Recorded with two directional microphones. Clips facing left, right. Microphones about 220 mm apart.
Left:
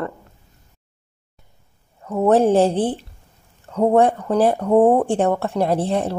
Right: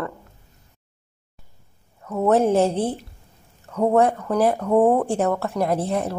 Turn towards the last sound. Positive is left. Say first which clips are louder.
# left 3 dB
turn(degrees=30)  # may be behind; listen again after turning